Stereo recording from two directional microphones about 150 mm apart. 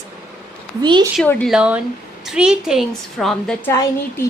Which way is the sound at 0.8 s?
30° right (ahead or behind).